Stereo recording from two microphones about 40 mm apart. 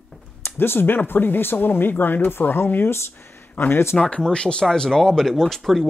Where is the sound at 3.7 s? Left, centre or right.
Left.